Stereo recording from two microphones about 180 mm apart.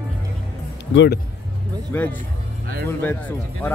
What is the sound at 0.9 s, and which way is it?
Speech, 75° left (ahead or behind).